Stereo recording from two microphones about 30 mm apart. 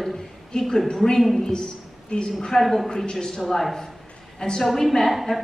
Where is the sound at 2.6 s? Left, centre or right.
Centre.